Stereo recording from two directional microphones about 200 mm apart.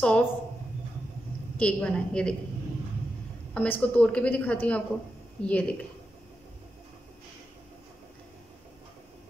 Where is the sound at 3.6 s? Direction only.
5° left (ahead or behind).